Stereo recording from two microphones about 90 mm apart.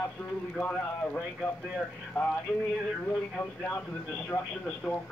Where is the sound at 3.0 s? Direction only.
20° left (ahead or behind).